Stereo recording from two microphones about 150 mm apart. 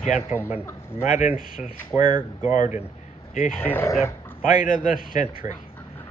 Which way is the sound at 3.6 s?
10° left (ahead or behind).